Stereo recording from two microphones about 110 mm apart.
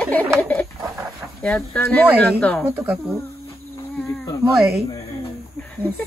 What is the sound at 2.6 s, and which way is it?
Speech, 10° right (ahead or behind).